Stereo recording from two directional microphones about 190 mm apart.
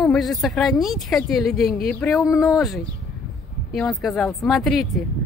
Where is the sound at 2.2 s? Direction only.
15° left (ahead or behind).